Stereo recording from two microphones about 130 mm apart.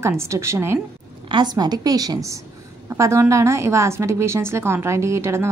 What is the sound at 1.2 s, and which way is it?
A woman's voice, 35° right (ahead or behind).